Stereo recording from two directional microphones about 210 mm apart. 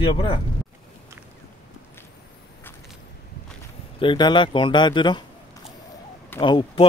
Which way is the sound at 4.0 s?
20° left (ahead or behind).